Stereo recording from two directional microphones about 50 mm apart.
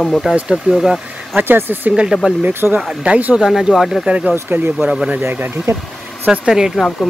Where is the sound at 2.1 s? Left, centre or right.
Centre.